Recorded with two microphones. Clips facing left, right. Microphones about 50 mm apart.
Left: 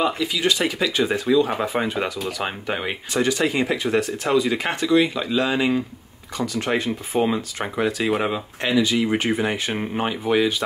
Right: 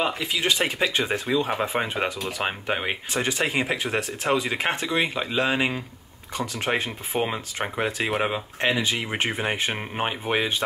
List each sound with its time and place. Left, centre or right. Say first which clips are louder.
0.0 s speech: left 3 dB; right
6.7 s speech: left 2 dB; centre
8.6 s speech: left 5 dB; right